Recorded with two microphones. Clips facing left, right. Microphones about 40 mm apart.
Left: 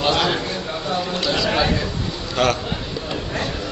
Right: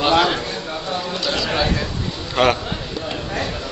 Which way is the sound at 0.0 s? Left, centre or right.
Centre.